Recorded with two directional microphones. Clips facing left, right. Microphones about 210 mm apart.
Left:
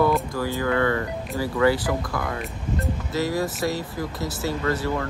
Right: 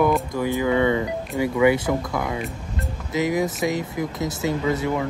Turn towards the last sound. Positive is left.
turn(degrees=-20)  # may be behind; listen again after turning